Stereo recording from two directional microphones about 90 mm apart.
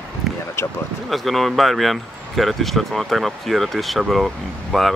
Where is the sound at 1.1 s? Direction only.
Centre (ahead or behind).